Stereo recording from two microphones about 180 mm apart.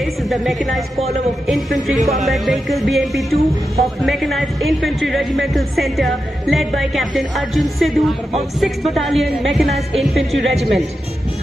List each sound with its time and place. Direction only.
0.0 s a woman's voice: centre (ahead or behind)
2.0 s speech: 40° right (ahead or behind)
2.2 s speech: centre (ahead or behind)